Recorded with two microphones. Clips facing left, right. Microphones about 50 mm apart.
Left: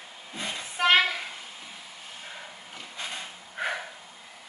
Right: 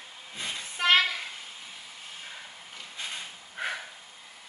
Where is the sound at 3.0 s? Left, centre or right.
Centre.